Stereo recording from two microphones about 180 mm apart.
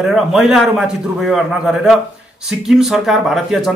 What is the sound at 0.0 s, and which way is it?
Speech, centre (ahead or behind).